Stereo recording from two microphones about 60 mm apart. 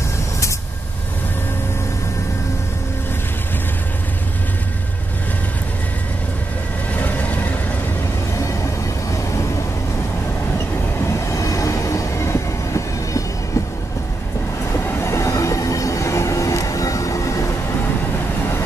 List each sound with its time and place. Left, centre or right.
7.0 s vehicle: left
11.0 s train: left
14.9 s train: left